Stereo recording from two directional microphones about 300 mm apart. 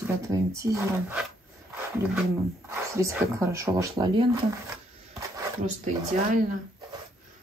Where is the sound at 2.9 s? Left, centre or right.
Centre.